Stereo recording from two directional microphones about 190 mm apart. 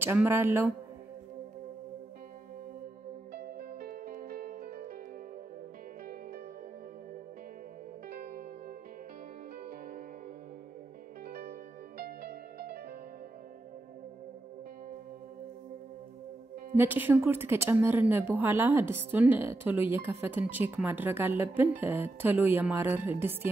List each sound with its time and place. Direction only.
0.0 s a woman's voice: 10° right (ahead or behind)
3.3 s music: 55° right (ahead or behind)
8.1 s music: 50° right (ahead or behind)
11.2 s music: 55° right (ahead or behind)
16.7 s a woman's voice: 10° right (ahead or behind)